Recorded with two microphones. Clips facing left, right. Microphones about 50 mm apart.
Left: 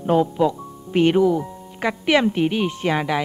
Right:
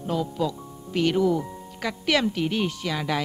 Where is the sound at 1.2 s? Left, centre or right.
Centre.